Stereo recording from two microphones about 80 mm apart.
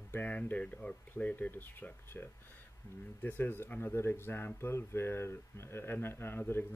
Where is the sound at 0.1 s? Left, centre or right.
Centre.